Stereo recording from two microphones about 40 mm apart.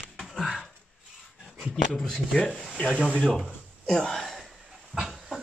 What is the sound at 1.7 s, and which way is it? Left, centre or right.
Speech, centre.